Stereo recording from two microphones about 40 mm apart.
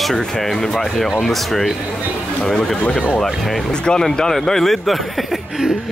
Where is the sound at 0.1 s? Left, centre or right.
Centre.